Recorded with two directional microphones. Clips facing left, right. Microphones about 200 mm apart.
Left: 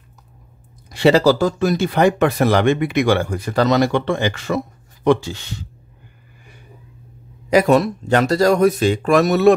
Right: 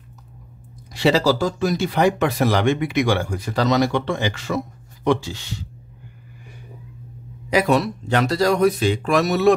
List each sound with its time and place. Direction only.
0.8 s speech: 55° left (ahead or behind)
7.4 s speech: 45° left (ahead or behind)